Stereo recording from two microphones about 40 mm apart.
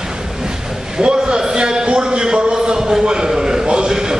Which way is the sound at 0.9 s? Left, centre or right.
Centre.